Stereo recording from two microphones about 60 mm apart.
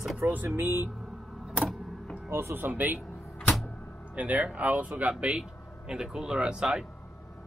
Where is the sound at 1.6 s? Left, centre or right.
Centre.